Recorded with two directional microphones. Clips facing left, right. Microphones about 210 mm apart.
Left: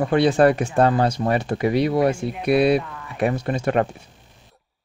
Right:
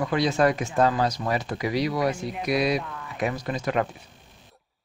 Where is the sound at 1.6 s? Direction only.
55° left (ahead or behind).